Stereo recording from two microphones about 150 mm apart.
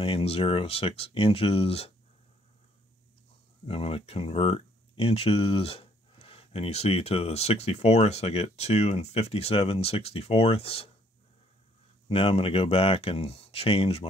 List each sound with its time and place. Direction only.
0.0 s speech: 40° left (ahead or behind)
3.6 s speech: 40° left (ahead or behind)
12.1 s speech: 40° left (ahead or behind)